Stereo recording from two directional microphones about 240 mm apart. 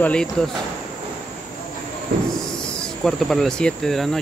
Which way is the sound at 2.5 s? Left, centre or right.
Centre.